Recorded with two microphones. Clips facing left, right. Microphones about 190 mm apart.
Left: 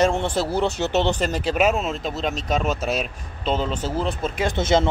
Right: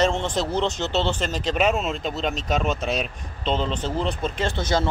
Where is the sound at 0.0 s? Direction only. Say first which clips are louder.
Left 2 dB; 10° left (ahead or behind).